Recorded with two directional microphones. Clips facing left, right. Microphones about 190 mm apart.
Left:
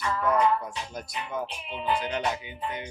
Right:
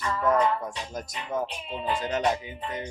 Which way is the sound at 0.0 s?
45° right (ahead or behind).